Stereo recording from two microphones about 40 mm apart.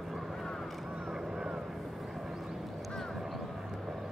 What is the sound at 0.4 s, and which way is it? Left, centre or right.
Vehicle, centre.